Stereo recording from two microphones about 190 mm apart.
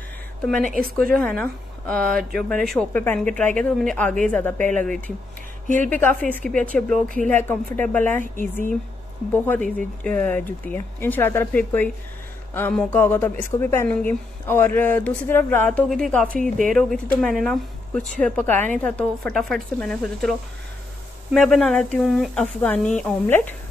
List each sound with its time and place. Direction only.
0.6 s a woman's voice: 45° right (ahead or behind)
1.1 s speech: 10° left (ahead or behind)
9.3 s speech: 10° left (ahead or behind)